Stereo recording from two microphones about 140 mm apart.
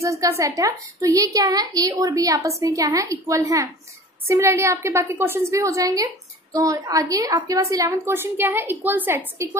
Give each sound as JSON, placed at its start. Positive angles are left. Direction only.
{"t": 0.0, "sound": "a woman's voice", "side_deg": -20}